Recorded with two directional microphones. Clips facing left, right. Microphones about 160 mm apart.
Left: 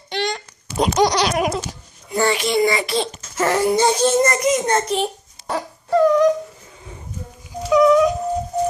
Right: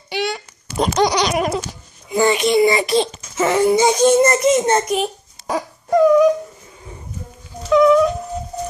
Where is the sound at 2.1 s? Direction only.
15° right (ahead or behind).